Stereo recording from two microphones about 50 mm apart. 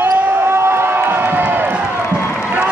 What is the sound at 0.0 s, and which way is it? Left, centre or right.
Basketball bounce, right.